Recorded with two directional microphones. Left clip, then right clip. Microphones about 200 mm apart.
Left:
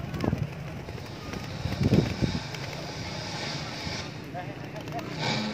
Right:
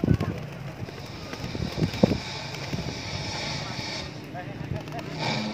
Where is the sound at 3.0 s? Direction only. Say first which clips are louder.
Right 2 dB; 40° right (ahead or behind).